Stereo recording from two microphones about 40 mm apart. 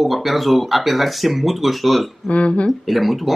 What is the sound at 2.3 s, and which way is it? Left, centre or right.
Speech, left.